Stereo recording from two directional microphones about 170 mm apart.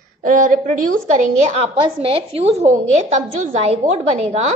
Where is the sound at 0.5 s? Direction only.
45° right (ahead or behind).